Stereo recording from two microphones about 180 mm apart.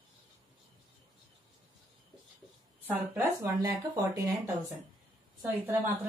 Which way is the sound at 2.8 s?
10° right (ahead or behind).